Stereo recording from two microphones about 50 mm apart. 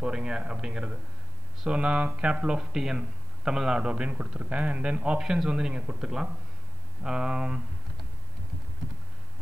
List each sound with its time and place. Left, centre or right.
0.0 s a man's voice: centre